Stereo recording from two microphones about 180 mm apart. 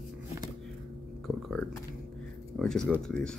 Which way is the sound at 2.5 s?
Centre (ahead or behind).